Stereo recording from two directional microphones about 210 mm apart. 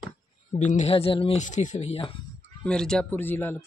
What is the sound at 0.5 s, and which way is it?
Speech, 35° left (ahead or behind).